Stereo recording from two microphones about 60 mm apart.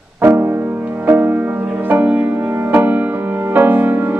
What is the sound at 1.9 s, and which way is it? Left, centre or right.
Music, right.